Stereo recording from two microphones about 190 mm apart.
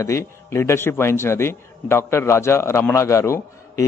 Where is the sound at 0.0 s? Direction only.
15° left (ahead or behind).